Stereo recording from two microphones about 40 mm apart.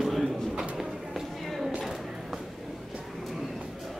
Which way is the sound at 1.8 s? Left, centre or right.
Centre.